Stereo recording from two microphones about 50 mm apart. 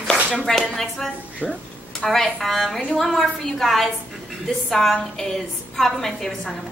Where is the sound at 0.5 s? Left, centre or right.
Centre.